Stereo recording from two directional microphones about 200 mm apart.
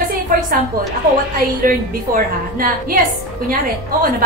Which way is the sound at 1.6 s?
45° right (ahead or behind).